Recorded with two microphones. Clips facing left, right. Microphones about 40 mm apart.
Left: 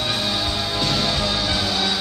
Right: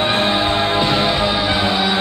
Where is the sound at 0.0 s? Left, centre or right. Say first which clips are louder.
Right 7 dB; right.